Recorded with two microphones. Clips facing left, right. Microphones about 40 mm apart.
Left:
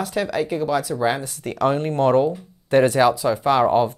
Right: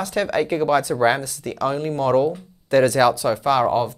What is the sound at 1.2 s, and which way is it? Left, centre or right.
Speech, left.